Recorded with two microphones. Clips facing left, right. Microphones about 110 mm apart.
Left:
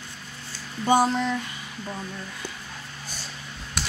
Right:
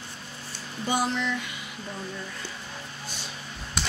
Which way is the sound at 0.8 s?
45° left (ahead or behind).